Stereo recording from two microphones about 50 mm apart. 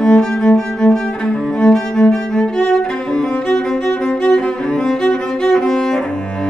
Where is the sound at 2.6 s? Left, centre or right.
Centre.